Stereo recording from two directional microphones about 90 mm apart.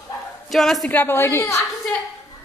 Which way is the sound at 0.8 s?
25° left (ahead or behind).